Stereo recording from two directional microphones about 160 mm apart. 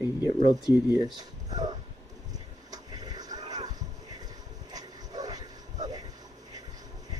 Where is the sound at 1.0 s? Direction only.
25° right (ahead or behind).